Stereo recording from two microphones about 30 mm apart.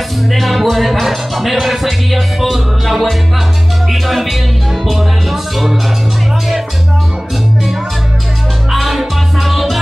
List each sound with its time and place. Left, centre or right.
0.3 s music: centre
3.9 s speech: centre
4.8 s music: centre
8.7 s music: centre